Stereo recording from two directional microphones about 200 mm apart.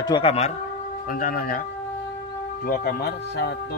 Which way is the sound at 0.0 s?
25° left (ahead or behind).